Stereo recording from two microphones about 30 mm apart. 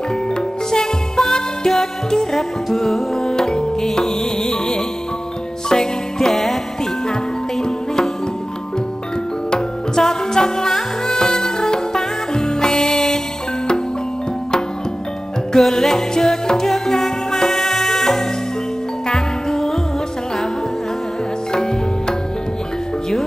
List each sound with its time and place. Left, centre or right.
0.7 s music: left
2.3 s music: centre
7.6 s music: left
9.9 s music: centre
15.5 s music: centre
19.0 s music: centre
21.5 s music: left